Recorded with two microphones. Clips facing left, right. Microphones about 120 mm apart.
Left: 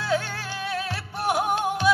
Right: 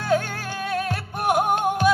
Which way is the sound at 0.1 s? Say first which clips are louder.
Right 5 dB; 50° right (ahead or behind).